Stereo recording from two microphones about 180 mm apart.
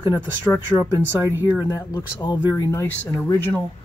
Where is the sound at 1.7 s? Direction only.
20° left (ahead or behind).